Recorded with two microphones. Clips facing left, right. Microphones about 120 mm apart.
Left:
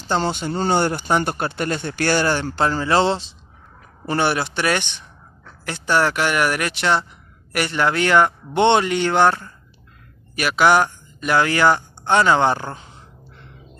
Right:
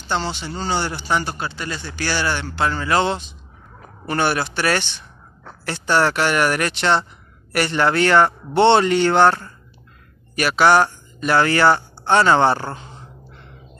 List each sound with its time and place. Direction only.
0.0 s speech: 45° left (ahead or behind); by 9.3 s 10° left (ahead or behind)
10.3 s a man's voice: 10° left (ahead or behind)